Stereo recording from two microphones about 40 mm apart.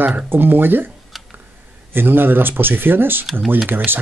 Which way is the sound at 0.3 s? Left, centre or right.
Right.